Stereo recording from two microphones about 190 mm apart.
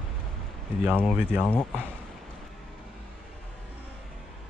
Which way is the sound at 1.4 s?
5° left (ahead or behind).